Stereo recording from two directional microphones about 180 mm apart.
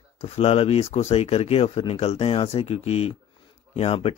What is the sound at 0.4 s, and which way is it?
Speech, 35° left (ahead or behind).